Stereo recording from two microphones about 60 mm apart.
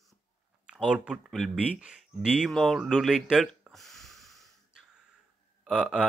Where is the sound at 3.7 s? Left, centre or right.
Centre.